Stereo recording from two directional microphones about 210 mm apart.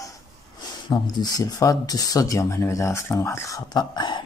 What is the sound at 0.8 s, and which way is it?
Speech, 20° left (ahead or behind).